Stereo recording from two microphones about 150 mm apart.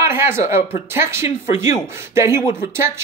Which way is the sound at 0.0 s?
15° right (ahead or behind).